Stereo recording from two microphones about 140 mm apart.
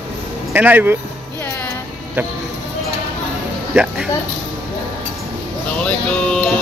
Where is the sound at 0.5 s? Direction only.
15° right (ahead or behind).